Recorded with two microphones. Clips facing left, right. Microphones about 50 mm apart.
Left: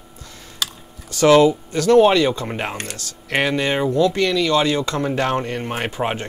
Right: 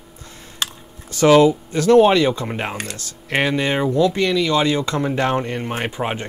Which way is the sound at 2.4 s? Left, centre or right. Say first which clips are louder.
Even; centre.